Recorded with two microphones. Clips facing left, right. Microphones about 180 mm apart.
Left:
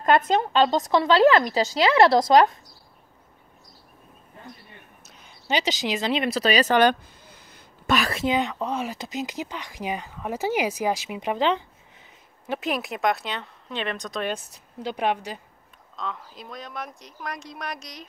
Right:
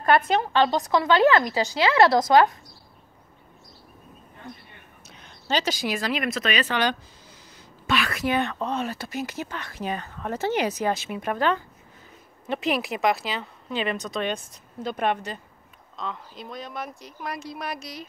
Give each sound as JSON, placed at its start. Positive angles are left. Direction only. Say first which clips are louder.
{"t": 0.4, "sound": "a woman's voice", "louder": "left 1 dB", "side_deg": 25}
{"t": 5.0, "sound": "a sound", "louder": "right 2 dB", "side_deg": 5}
{"t": 5.5, "sound": "speech", "louder": "left 1 dB", "side_deg": 15}
{"t": 8.3, "sound": "speech", "louder": "right 1 dB", "side_deg": 15}
{"t": 12.4, "sound": "speech", "louder": "right 2 dB", "side_deg": 0}
{"t": 16.0, "sound": "speech", "louder": "even", "side_deg": 0}